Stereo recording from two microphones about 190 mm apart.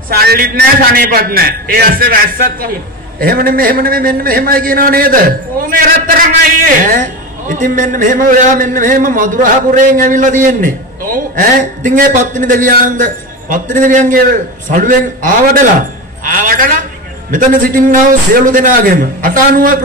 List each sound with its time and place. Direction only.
0.1 s a man's voice: 55° right (ahead or behind)